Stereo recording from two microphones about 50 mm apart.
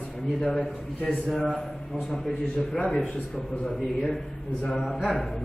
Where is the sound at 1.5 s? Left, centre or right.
Centre; by 3.8 s left.